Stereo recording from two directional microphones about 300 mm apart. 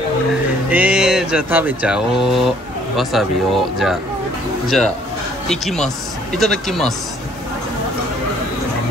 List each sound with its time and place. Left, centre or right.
0.7 s speech: centre
5.5 s speech: centre